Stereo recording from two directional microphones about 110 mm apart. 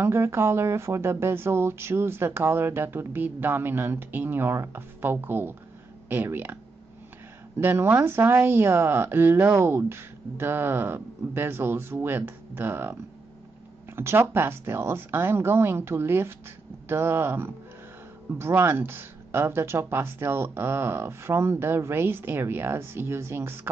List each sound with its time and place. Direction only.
0.0 s speech: 25° right (ahead or behind)
13.9 s speech: 20° right (ahead or behind)